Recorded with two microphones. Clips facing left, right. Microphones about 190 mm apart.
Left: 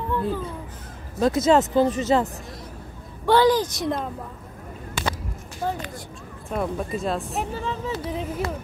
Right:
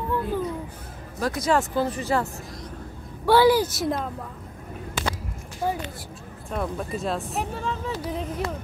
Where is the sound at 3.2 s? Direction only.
10° right (ahead or behind).